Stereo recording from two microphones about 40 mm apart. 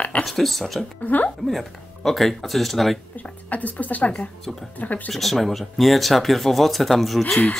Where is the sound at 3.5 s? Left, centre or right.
Left.